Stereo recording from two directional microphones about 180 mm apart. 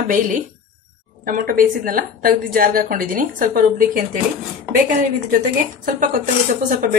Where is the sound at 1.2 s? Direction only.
50° right (ahead or behind).